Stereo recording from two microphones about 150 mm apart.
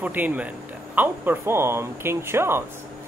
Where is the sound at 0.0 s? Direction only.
10° right (ahead or behind).